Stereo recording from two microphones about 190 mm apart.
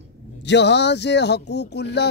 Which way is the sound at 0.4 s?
65° left (ahead or behind).